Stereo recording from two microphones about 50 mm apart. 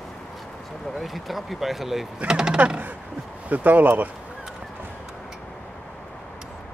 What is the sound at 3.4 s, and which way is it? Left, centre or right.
Speech, right.